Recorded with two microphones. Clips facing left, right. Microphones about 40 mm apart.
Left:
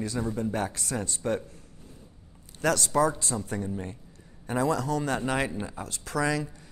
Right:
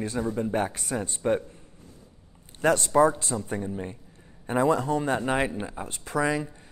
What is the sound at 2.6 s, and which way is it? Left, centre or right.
Speech, right.